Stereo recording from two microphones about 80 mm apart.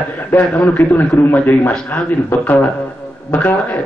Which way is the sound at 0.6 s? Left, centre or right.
Left.